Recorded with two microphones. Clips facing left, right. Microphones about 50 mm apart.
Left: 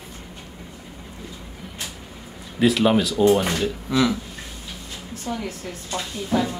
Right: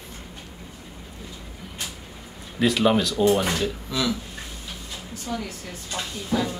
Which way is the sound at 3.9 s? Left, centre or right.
Left.